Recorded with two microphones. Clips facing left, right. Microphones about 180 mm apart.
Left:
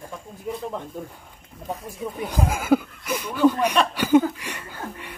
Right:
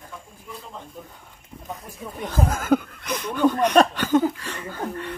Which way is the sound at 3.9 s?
10° left (ahead or behind).